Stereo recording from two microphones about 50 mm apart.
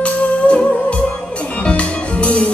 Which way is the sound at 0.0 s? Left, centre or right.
Left.